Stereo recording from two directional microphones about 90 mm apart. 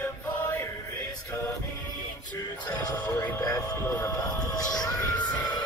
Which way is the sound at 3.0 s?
45° left (ahead or behind).